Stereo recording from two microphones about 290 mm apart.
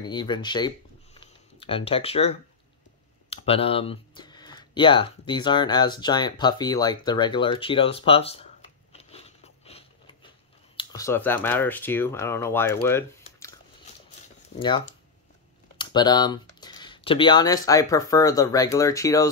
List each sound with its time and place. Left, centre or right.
0.0 s speech: centre
8.9 s biting: left
10.8 s speech: centre
14.6 s speech: centre